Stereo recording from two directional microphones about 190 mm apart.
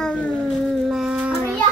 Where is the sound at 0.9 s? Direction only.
5° right (ahead or behind).